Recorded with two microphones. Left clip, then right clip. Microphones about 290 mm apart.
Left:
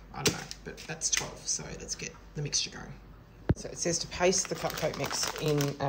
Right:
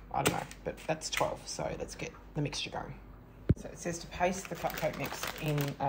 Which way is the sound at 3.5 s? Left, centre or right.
Left.